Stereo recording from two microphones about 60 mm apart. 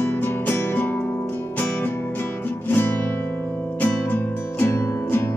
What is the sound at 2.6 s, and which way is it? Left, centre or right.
Music, left.